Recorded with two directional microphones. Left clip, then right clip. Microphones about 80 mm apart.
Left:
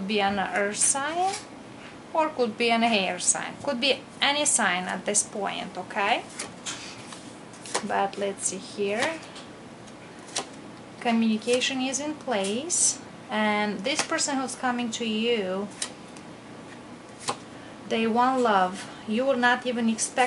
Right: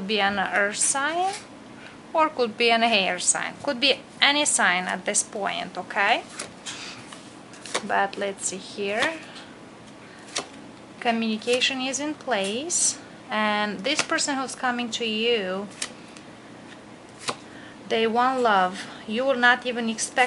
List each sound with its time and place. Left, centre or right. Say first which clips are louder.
0.1 s a woman's voice: right 3 dB; right
2.1 s a woman's voice: right 3 dB; right
7.9 s a woman's voice: right 3 dB; right
11.0 s a woman's voice: right 1 dB; right
17.8 s a woman's voice: right 2 dB; right